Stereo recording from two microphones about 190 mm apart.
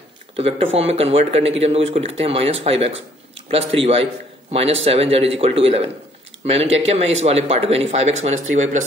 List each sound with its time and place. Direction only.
0.4 s a man's voice: 30° right (ahead or behind)